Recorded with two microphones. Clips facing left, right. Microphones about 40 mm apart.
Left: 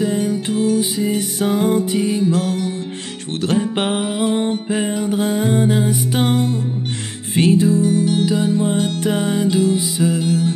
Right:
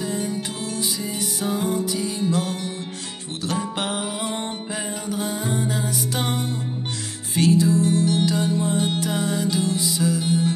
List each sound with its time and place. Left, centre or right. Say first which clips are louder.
0.0 s music: left 7 dB; left
1.1 s music: left 6 dB; left
3.4 s music: left 7 dB; left
4.3 s music: left 10 dB; centre
4.6 s music: left 9 dB; left
7.3 s music: left 4 dB; left
8.6 s music: left 4 dB; left